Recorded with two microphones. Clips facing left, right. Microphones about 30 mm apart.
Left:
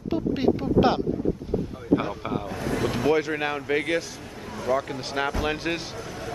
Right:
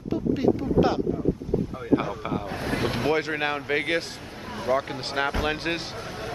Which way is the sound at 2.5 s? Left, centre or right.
Right.